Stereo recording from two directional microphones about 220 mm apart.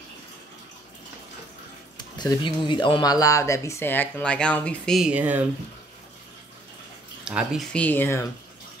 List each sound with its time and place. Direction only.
2.0 s speech: 20° left (ahead or behind); by 5.5 s 5° right (ahead or behind)
7.2 s speech: centre (ahead or behind)